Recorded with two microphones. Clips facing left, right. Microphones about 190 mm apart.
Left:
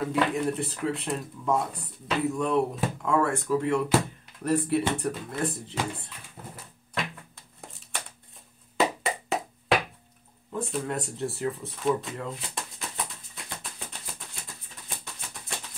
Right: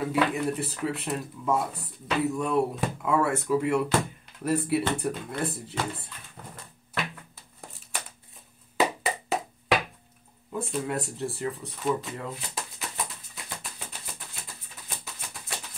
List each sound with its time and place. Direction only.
0.0 s speech: centre (ahead or behind)
7.6 s a sound: centre (ahead or behind)
10.5 s speech: 5° right (ahead or behind)